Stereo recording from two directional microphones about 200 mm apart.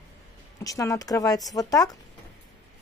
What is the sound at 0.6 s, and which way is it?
Speech, 15° left (ahead or behind).